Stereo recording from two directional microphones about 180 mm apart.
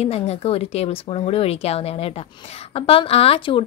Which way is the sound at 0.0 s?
35° left (ahead or behind).